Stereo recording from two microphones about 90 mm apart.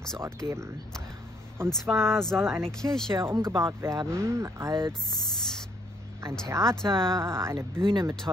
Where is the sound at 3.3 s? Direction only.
35° right (ahead or behind).